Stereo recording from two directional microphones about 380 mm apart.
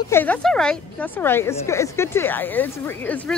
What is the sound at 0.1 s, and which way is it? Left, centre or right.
A woman's voice, centre.